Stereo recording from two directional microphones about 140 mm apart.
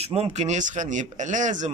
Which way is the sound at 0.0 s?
50° right (ahead or behind).